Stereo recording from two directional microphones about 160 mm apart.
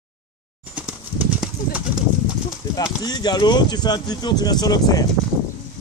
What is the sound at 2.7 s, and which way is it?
Speech, 25° left (ahead or behind).